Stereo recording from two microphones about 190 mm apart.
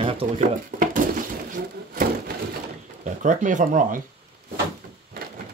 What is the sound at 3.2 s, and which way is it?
Speech, 40° right (ahead or behind).